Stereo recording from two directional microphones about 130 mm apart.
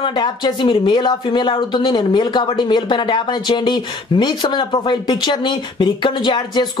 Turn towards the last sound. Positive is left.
turn(degrees=35)  # may be behind; listen again after turning